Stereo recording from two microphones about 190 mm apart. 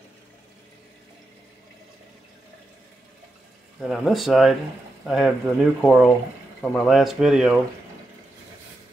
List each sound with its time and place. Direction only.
3.8 s speech: centre (ahead or behind)